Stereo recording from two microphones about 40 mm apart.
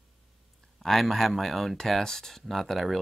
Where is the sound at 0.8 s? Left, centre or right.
Centre.